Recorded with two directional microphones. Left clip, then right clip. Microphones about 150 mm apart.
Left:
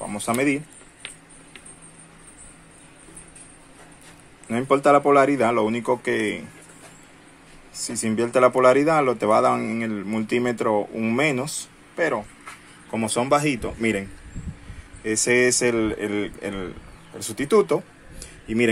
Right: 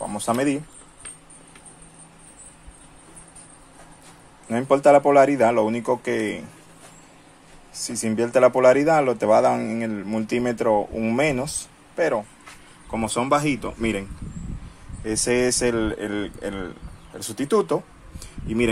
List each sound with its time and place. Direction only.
0.0 s speech: 10° right (ahead or behind)
4.5 s speech: 5° right (ahead or behind)
7.7 s speech: 15° left (ahead or behind)
8.0 s speech: 5° right (ahead or behind)
12.9 s speech: centre (ahead or behind)
15.0 s speech: centre (ahead or behind)